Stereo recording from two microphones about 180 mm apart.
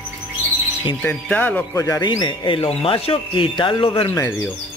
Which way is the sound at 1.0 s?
10° left (ahead or behind).